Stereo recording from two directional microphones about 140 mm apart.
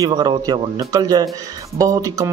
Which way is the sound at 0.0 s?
30° right (ahead or behind).